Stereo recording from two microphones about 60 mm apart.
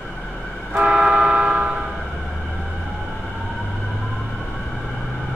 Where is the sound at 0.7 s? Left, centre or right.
Centre.